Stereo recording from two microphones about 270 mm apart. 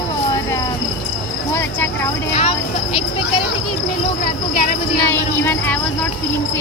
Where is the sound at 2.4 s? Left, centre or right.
Left.